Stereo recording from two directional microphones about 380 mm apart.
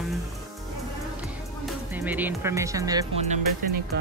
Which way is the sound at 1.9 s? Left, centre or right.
Centre.